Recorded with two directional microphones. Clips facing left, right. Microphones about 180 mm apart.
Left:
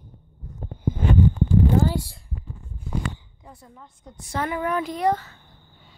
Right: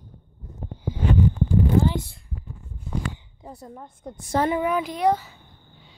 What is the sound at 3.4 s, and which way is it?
A woman's voice, 40° right (ahead or behind).